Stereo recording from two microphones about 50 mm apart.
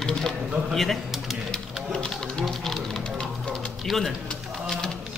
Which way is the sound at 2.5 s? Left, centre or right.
Centre.